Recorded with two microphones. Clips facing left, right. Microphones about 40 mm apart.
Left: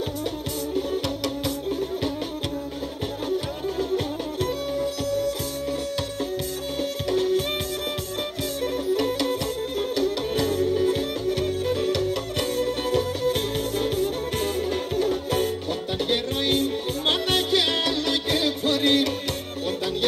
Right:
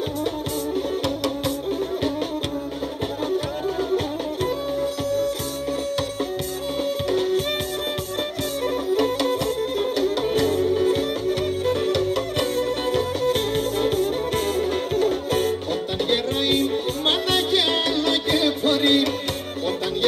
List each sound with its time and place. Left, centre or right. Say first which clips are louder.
3.3 s music: right 2 dB; centre
6.8 s music: right 2 dB; centre
8.6 s music: right 3 dB; centre